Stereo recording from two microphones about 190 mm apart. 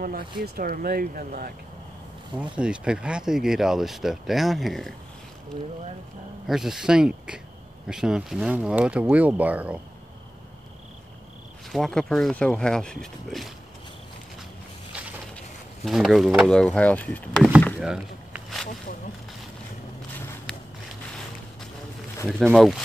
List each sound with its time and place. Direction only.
0.0 s speech: 50° right (ahead or behind)
2.3 s speech: 5° right (ahead or behind)
6.4 s speech: centre (ahead or behind)
11.7 s speech: centre (ahead or behind)
15.8 s speech: centre (ahead or behind)
17.7 s a sound: 5° right (ahead or behind)
22.4 s speech: centre (ahead or behind)